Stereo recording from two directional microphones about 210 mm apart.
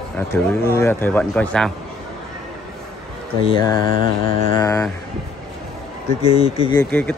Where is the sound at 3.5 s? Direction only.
20° left (ahead or behind).